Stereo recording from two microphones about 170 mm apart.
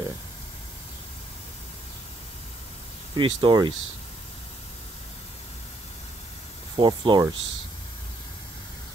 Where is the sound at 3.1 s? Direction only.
30° right (ahead or behind).